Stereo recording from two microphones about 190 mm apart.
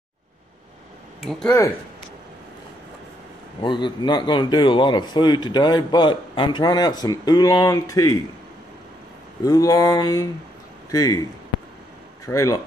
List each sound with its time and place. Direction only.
3.6 s speech: 25° left (ahead or behind)
9.4 s a man's voice: 20° left (ahead or behind)
12.3 s speech: 15° left (ahead or behind)